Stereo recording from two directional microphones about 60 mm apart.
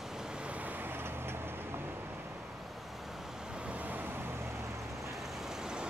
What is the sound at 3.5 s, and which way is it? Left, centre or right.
Vehicle, right.